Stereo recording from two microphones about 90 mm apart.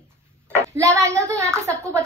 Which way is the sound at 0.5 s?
35° right (ahead or behind).